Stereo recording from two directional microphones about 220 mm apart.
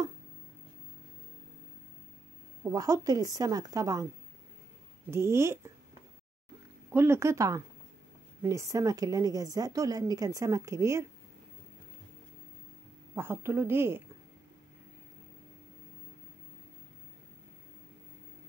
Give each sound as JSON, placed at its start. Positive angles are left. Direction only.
{"t": 2.7, "sound": "a woman's voice", "side_deg": -15}
{"t": 5.1, "sound": "a woman's voice", "side_deg": -10}
{"t": 6.9, "sound": "a woman's voice", "side_deg": -10}
{"t": 13.1, "sound": "a woman's voice", "side_deg": -10}